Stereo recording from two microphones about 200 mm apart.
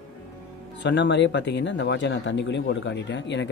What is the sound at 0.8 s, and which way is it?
Speech, 60° left (ahead or behind).